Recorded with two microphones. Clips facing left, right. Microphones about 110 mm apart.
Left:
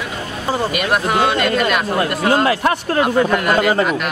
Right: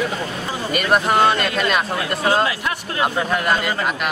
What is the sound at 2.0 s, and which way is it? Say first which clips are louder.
Speech: left 5 dB; 55° left (ahead or behind).